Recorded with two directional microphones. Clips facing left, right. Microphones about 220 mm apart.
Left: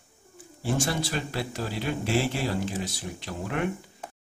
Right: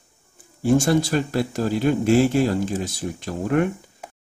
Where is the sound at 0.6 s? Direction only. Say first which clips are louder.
Right 10 dB; 45° right (ahead or behind).